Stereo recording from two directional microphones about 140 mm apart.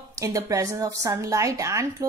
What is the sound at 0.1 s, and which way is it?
A woman's voice, 25° right (ahead or behind).